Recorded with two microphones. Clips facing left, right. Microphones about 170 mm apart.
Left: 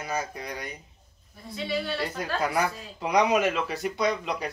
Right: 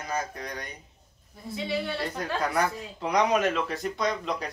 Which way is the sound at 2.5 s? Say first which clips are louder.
Even; 5° left (ahead or behind).